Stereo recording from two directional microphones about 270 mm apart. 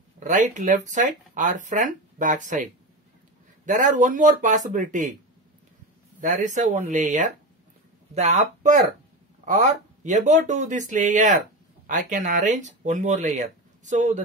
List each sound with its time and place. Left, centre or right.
0.2 s speech: right
6.2 s speech: right